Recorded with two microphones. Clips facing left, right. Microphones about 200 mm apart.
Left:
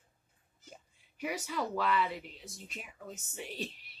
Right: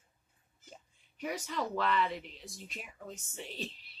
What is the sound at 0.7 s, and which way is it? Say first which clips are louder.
A woman's voice: left 1 dB; 5° left (ahead or behind).